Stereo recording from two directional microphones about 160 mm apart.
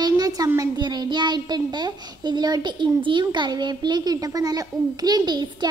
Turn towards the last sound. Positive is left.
turn(degrees=-25)  # may be behind; listen again after turning